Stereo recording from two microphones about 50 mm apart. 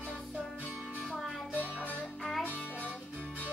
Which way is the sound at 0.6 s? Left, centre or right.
Left.